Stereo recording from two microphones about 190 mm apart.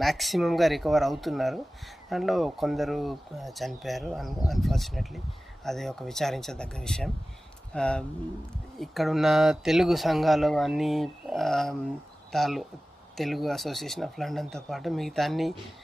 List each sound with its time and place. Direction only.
0.0 s speech: centre (ahead or behind)